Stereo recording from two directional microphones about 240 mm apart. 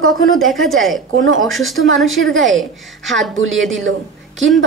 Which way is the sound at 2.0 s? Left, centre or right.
Right.